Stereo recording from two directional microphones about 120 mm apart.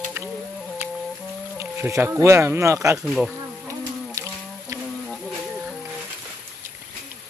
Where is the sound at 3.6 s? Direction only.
25° right (ahead or behind).